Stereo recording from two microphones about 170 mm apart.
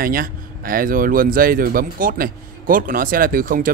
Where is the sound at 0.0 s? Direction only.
60° right (ahead or behind).